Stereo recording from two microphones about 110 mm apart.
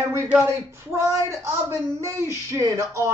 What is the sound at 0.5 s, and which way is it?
Speech, 25° right (ahead or behind).